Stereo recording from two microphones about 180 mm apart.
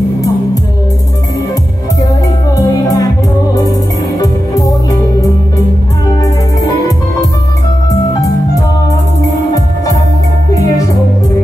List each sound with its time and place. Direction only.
2.5 s music: 20° left (ahead or behind)
4.2 s music: 20° left (ahead or behind)
6.2 s music: 20° left (ahead or behind)